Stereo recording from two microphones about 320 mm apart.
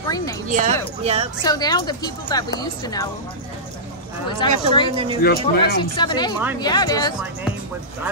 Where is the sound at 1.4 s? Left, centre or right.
Centre.